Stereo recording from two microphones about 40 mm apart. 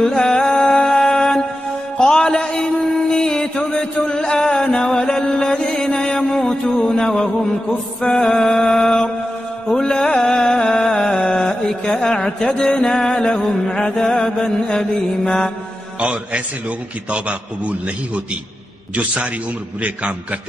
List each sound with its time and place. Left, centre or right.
0.0 s music: centre
5.8 s mantra: centre
6.9 s music: centre
8.5 s mantra: left
9.7 s music: centre
11.1 s mantra: centre
11.8 s music: centre
13.5 s mantra: centre
16.0 s a man's voice: right
19.8 s a man's voice: right